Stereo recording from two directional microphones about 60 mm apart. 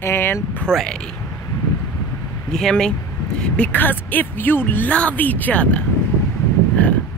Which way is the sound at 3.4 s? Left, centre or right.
Left.